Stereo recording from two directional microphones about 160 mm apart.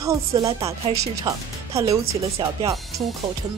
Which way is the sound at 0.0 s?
20° right (ahead or behind).